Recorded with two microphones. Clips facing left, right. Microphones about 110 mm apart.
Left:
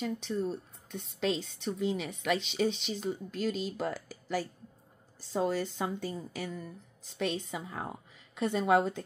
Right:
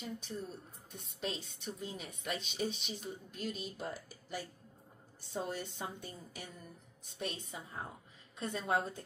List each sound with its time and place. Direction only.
0.0 s a woman's voice: 80° left
8.4 s a woman's voice: 75° left (ahead or behind); by 9.0 s 90° left